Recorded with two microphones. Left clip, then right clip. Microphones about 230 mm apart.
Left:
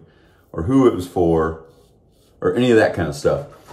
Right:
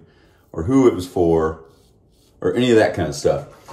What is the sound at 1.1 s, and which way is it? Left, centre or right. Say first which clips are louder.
Speech: even; left.